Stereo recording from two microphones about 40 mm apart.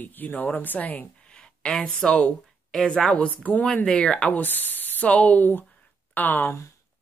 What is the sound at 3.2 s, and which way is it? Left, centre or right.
Speech, left.